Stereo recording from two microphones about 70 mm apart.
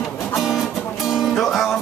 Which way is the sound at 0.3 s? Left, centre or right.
Centre.